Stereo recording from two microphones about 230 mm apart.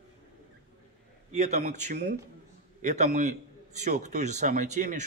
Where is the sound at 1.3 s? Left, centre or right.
Right.